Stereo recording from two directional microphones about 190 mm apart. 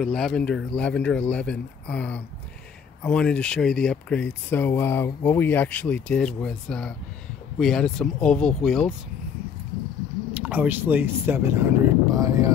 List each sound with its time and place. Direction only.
0.0 s speech: centre (ahead or behind)
10.3 s speech: 5° right (ahead or behind)